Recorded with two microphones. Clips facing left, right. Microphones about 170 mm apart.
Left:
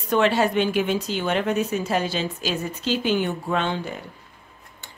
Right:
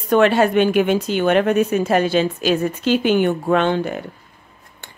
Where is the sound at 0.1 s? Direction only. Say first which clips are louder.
Right 6 dB; 55° right (ahead or behind).